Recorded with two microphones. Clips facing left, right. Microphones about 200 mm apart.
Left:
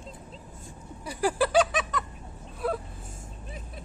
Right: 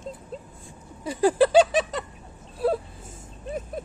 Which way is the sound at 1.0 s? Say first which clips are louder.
Right 7 dB; 25° right (ahead or behind).